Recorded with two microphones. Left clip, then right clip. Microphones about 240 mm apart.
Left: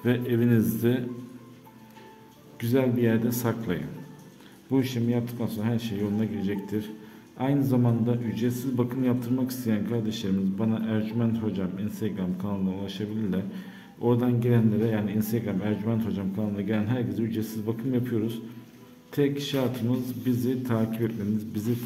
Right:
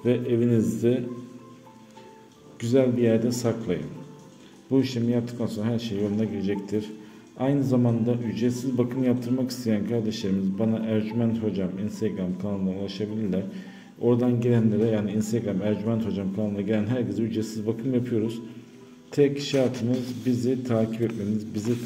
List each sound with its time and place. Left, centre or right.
0.0 s a man's voice: centre
2.6 s a man's voice: centre